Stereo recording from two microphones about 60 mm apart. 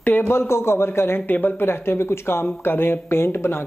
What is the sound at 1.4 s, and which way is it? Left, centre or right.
Speech, left.